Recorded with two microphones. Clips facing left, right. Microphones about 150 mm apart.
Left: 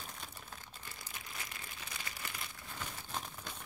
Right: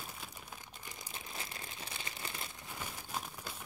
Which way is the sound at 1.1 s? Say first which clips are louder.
Right 3 dB; 30° right (ahead or behind).